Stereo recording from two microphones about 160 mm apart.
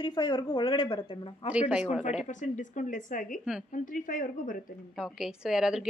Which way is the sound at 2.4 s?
50° left (ahead or behind).